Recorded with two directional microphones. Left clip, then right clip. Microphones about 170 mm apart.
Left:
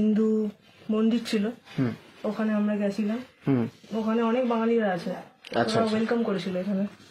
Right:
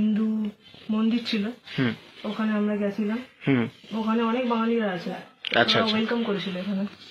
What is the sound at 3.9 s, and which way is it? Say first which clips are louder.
Speech: even; 25° left (ahead or behind).